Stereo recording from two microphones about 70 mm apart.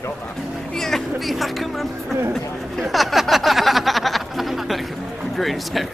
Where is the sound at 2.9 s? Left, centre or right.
Centre.